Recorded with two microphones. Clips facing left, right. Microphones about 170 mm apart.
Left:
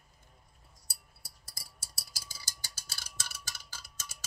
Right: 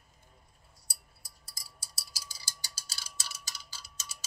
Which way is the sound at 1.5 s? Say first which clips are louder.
Even; 55° left (ahead or behind).